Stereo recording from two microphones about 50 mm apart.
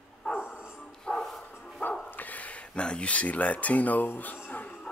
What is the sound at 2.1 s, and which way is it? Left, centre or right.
Speech, left.